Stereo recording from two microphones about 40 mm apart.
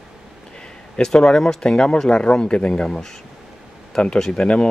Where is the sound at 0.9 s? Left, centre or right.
Centre.